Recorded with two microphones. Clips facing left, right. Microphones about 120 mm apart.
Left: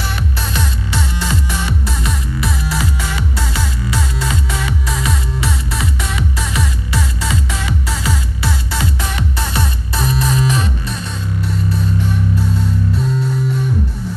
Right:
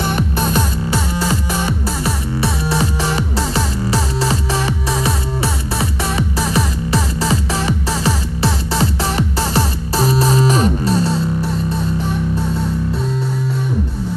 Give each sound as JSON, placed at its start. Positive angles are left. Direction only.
{"t": 0.4, "sound": "music", "side_deg": -45}